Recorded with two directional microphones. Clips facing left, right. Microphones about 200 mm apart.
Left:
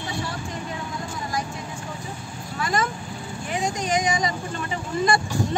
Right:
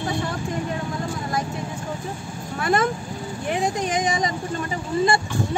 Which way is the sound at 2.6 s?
55° right (ahead or behind).